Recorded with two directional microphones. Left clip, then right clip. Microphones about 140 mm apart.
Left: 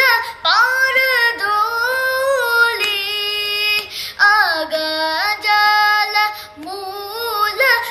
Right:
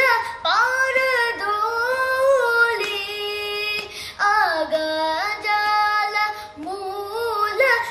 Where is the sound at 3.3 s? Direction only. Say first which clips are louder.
Left 7 dB; 15° right (ahead or behind).